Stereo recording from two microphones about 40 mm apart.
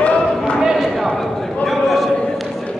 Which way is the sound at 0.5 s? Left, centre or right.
Centre.